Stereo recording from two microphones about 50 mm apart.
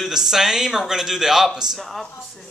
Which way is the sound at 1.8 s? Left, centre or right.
Centre.